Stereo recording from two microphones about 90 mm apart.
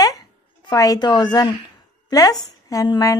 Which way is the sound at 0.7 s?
40° left (ahead or behind).